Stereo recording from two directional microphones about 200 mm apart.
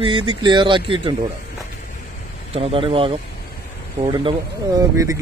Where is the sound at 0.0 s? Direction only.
25° right (ahead or behind).